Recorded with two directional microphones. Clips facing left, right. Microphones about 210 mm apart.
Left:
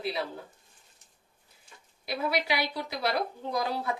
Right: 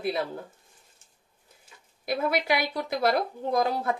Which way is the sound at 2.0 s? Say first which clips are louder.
Right 4 dB; 50° right (ahead or behind).